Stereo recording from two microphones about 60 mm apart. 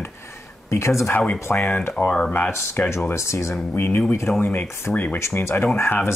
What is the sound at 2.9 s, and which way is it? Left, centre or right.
Speech, left.